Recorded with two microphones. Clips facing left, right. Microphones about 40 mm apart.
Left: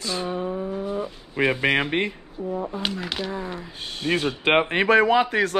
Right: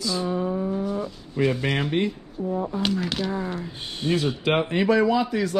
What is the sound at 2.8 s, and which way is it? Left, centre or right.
Speech, centre.